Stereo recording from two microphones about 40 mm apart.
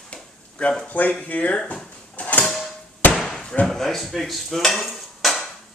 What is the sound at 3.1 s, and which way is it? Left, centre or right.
Slam, centre.